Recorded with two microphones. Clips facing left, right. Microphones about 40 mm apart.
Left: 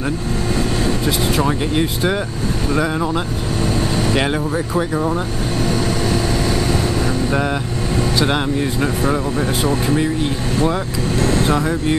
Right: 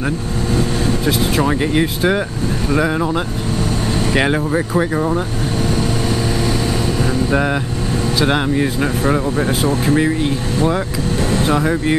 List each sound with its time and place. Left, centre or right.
1.0 s speech: centre
7.2 s speech: centre
11.3 s speech: centre